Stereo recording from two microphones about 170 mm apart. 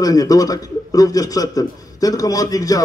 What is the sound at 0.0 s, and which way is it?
A man's voice, 20° left (ahead or behind).